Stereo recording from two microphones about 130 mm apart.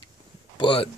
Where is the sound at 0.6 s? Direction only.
40° left (ahead or behind).